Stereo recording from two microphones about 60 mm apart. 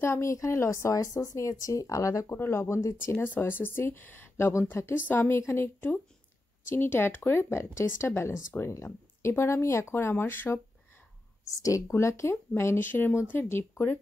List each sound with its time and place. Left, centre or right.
0.0 s speech: left
0.3 s speech: left
2.2 s speech: left
2.6 s speech: left
3.0 s speech: left
5.0 s speech: left
11.9 s speech: left